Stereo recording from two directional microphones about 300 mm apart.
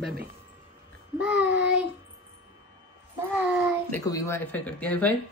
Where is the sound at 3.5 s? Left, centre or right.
Centre.